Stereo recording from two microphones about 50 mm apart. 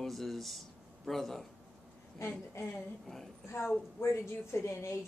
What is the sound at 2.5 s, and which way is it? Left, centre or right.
Speech, left.